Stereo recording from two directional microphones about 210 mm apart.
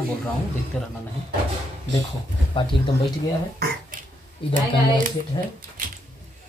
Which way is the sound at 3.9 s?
40° right (ahead or behind).